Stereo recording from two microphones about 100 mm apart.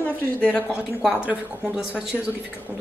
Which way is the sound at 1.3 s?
5° right (ahead or behind).